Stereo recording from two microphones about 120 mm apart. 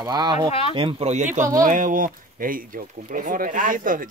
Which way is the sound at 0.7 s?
50° right (ahead or behind).